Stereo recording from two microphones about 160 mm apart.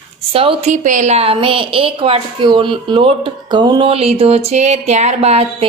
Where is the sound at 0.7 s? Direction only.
50° right (ahead or behind).